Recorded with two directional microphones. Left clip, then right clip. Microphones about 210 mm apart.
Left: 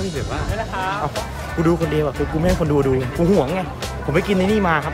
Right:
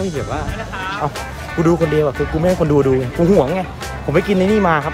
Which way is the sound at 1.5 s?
Centre (ahead or behind).